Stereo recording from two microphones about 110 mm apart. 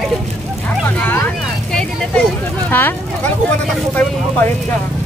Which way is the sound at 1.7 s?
5° left (ahead or behind).